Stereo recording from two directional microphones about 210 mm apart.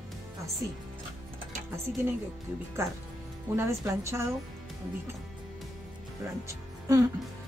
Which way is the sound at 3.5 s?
15° right (ahead or behind).